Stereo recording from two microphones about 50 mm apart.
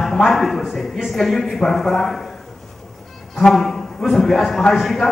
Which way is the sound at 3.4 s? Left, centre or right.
Centre.